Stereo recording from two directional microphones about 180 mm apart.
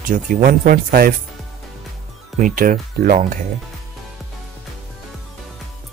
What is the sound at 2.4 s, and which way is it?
Speech, 50° right (ahead or behind).